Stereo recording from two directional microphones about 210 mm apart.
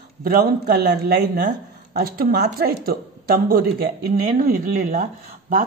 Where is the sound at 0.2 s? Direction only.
45° right (ahead or behind).